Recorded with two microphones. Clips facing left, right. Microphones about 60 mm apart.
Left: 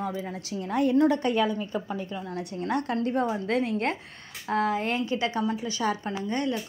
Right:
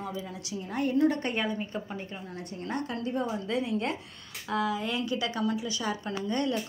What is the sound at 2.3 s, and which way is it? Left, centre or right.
Speech, left.